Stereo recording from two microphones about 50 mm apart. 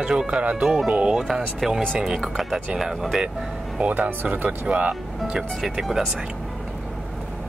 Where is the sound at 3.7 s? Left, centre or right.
Right.